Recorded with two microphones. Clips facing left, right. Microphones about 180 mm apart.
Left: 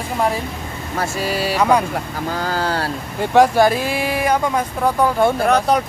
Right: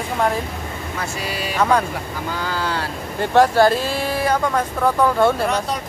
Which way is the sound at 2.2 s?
40° left (ahead or behind).